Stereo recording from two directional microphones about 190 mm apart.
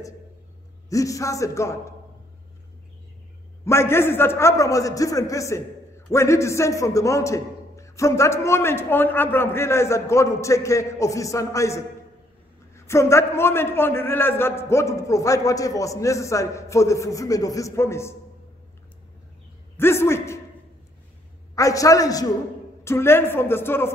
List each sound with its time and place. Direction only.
0.8 s a man's voice: 15° left (ahead or behind)
3.6 s a man's voice: 15° left (ahead or behind)
19.8 s a man's voice: 15° left (ahead or behind)
21.5 s a man's voice: 15° left (ahead or behind)